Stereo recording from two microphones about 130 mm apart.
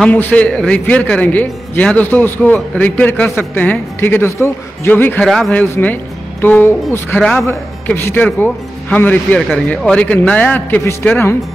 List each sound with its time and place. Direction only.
0.0 s a man's voice: 10° left (ahead or behind)
5.2 s a man's voice: centre (ahead or behind)
5.5 s a man's voice: 10° left (ahead or behind)